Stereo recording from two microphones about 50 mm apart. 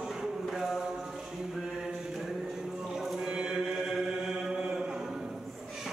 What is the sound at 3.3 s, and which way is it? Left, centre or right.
Mantra, centre.